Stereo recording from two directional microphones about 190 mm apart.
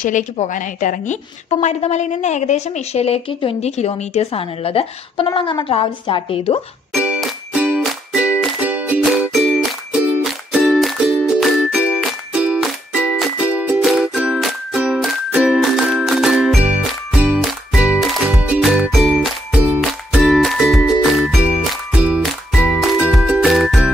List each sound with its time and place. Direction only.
0.0 s a woman's voice: 40° left (ahead or behind)
6.9 s music: 5° right (ahead or behind)